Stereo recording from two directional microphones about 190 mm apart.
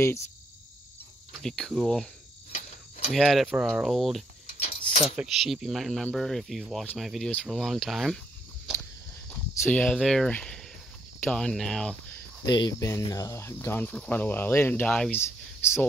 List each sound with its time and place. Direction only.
1.4 s speech: centre (ahead or behind)
3.1 s speech: centre (ahead or behind)
4.5 s a sound: 40° left (ahead or behind)
5.0 s speech: 5° right (ahead or behind)
9.3 s speech: 10° left (ahead or behind)
12.4 s speech: 20° left (ahead or behind)